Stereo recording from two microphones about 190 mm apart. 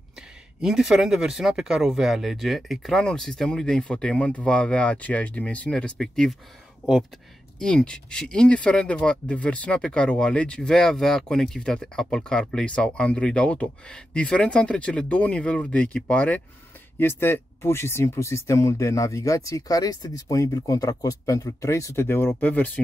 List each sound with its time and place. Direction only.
0.6 s speech: 5° right (ahead or behind)
7.5 s speech: 5° left (ahead or behind)